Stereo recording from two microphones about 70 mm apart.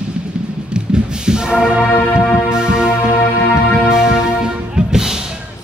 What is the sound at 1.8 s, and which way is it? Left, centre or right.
Music, left.